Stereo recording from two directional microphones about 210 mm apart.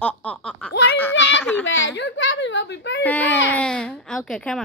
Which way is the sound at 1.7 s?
65° left (ahead or behind).